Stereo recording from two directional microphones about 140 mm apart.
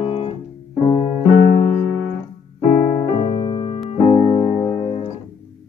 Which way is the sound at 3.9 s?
45° left (ahead or behind).